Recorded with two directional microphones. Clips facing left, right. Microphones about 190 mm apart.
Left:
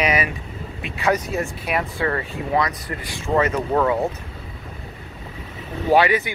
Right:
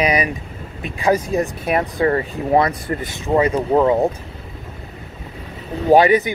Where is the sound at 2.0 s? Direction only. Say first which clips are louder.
Right 6 dB; 25° right (ahead or behind).